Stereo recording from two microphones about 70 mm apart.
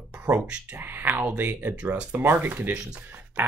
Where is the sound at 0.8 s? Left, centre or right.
Right.